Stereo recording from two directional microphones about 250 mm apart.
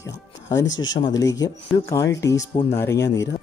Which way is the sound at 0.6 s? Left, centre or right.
Left.